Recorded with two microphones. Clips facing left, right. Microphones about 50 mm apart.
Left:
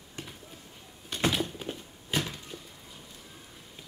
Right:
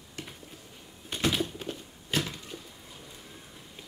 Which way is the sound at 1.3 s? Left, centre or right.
Centre.